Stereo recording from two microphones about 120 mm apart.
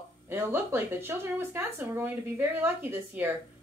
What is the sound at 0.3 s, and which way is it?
A woman's voice, 20° right (ahead or behind).